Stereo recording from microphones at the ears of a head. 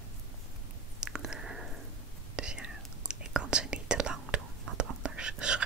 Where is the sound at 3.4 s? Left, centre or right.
Right.